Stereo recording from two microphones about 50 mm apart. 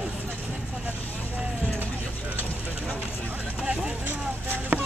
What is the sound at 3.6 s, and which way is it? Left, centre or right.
Speech, centre.